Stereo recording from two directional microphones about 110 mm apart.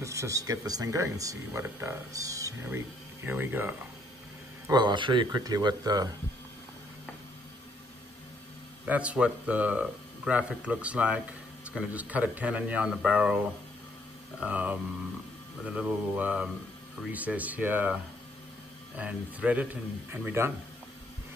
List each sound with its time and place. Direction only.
0.0 s speech: 25° right (ahead or behind)
3.3 s speech: 20° right (ahead or behind)
4.6 s speech: 40° right (ahead or behind)
8.8 s speech: 10° right (ahead or behind)
14.4 s speech: 15° right (ahead or behind)